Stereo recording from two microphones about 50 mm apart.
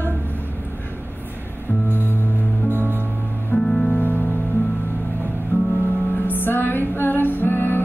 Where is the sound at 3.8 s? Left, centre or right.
Left.